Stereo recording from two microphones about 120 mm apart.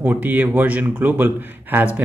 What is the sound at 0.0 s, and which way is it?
A man's voice, 15° right (ahead or behind).